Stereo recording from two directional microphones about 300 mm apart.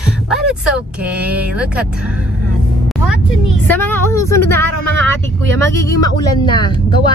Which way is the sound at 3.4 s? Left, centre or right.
Centre.